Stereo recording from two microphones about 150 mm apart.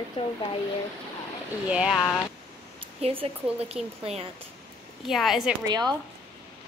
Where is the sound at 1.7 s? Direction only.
5° right (ahead or behind).